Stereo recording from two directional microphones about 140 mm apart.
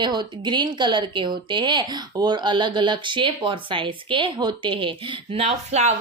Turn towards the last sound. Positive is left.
turn(degrees=-50)  # may be behind; listen again after turning